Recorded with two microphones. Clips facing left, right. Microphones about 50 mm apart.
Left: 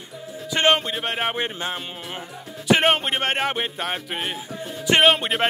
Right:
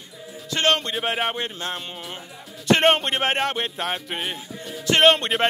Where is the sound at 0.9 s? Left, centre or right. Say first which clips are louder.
Right 1 dB; centre.